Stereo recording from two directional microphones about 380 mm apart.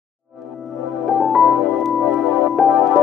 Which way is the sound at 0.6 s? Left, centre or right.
Centre.